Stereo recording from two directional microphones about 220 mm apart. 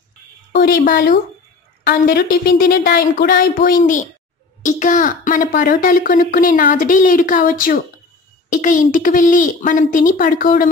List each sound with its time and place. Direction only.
0.5 s speech: 45° left (ahead or behind)